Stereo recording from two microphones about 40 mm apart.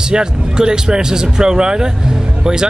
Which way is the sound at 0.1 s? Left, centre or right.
Centre.